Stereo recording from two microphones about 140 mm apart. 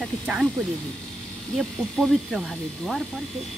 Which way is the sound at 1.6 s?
Centre (ahead or behind).